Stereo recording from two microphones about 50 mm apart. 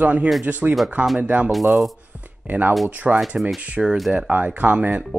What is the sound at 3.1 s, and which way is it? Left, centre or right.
Speech, centre.